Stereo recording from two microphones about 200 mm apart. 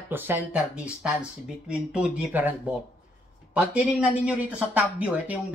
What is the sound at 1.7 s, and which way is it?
Speech, 5° right (ahead or behind).